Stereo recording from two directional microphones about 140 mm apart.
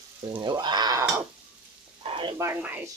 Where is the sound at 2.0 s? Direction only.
40° right (ahead or behind).